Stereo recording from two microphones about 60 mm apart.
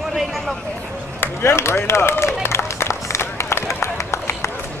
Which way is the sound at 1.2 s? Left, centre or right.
Left.